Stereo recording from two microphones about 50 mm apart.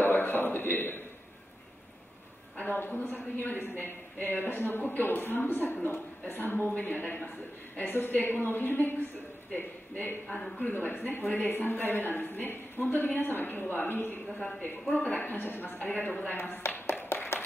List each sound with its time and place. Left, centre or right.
0.0 s a sound: left
2.5 s a woman's voice: left
16.3 s a woman's voice: left
17.1 s clapping: left